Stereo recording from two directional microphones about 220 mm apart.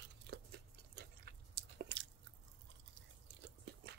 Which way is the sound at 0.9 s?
50° right (ahead or behind).